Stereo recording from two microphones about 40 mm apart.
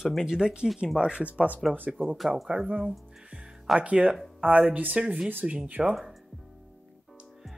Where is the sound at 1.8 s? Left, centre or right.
Right.